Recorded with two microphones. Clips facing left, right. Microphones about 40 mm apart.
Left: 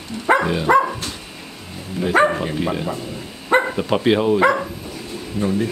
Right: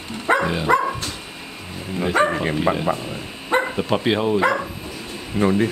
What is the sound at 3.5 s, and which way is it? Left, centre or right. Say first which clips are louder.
Bow-wow: left 3 dB; centre.